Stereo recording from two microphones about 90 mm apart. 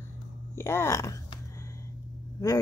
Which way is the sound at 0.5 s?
30° left (ahead or behind).